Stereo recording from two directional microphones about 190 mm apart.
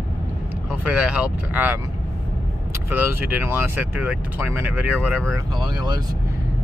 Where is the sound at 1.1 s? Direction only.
10° right (ahead or behind).